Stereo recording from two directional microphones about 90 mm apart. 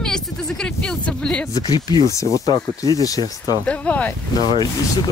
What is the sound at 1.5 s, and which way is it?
Speech, 50° left (ahead or behind).